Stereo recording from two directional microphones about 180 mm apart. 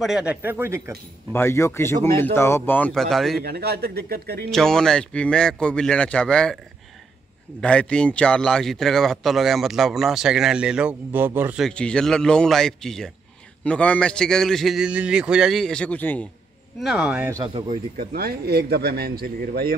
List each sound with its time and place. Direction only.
0.0 s speech: 5° right (ahead or behind)
1.3 s a man's voice: 15° left (ahead or behind)
3.4 s speech: 60° right (ahead or behind)
4.5 s a man's voice: 5° left (ahead or behind)
7.6 s a man's voice: 5° left (ahead or behind); by 11.6 s 10° right (ahead or behind)
11.6 s a man's voice: 5° left (ahead or behind)
16.8 s a man's voice: centre (ahead or behind)
17.9 s speech: 60° right (ahead or behind)